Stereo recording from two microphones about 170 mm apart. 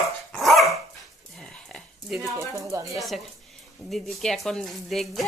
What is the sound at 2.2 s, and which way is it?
Speech, 15° right (ahead or behind).